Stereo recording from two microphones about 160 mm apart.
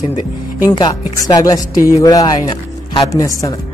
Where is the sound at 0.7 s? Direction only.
25° left (ahead or behind).